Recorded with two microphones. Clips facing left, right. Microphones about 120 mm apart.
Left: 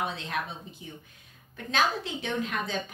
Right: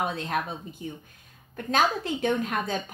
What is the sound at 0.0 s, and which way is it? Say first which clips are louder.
Speech: right 4 dB; 45° right (ahead or behind).